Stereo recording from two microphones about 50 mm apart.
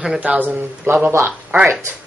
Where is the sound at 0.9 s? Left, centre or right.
Right.